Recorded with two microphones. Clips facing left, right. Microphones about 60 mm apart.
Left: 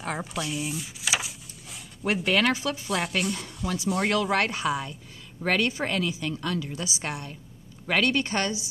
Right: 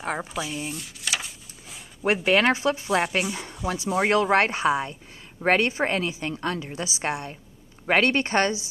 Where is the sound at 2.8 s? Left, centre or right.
Centre.